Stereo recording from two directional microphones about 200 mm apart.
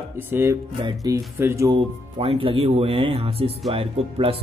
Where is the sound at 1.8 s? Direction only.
25° right (ahead or behind).